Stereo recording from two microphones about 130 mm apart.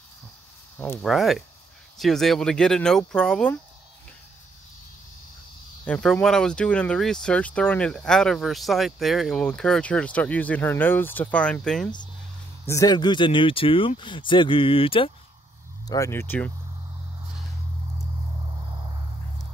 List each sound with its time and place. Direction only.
1.0 s speech: centre (ahead or behind)
5.9 s speech: 10° left (ahead or behind)
12.6 s speech: 25° left (ahead or behind); by 15.1 s 45° left (ahead or behind)
15.9 s speech: 20° left (ahead or behind)